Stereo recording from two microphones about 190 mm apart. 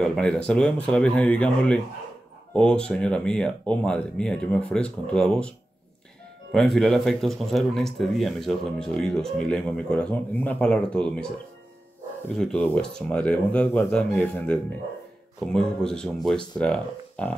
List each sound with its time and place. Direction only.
0.0 s speech: 5° left (ahead or behind)
6.5 s speech: centre (ahead or behind)
12.4 s speech: 5° left (ahead or behind)